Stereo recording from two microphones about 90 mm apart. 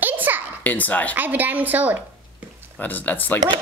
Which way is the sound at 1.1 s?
20° right (ahead or behind).